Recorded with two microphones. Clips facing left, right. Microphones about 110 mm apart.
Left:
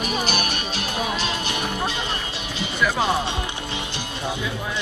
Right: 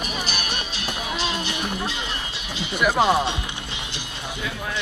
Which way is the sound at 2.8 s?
15° right (ahead or behind).